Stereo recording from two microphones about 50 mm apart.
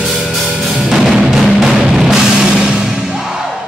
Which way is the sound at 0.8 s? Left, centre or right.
Centre.